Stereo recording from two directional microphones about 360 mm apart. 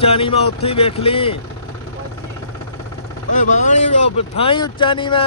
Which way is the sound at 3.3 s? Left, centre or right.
Left.